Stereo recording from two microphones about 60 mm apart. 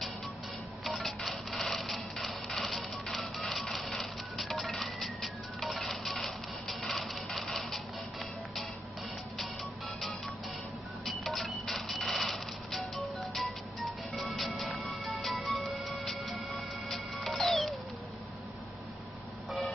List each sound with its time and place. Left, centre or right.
0.8 s printer: centre
7.3 s a sound: centre
11.1 s cash register: centre
14.8 s music: centre